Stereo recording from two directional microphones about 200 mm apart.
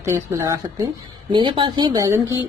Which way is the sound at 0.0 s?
15° right (ahead or behind).